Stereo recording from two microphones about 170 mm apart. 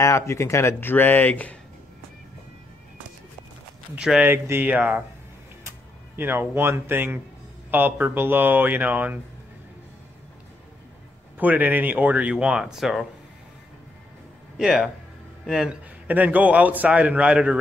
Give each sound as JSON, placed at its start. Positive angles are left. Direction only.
{"t": 0.0, "sound": "speech", "side_deg": 15}
{"t": 3.9, "sound": "a man's voice", "side_deg": -5}
{"t": 11.3, "sound": "a man's voice", "side_deg": -10}
{"t": 14.6, "sound": "a man's voice", "side_deg": -5}